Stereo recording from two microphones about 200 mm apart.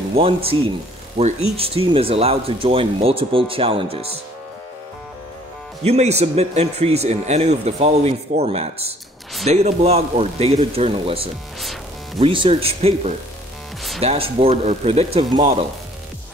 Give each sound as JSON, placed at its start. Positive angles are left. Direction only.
{"t": 0.1, "sound": "speech", "side_deg": -30}
{"t": 5.9, "sound": "speech", "side_deg": -35}